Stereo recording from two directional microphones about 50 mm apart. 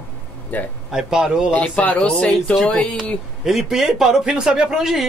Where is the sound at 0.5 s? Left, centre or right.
Left.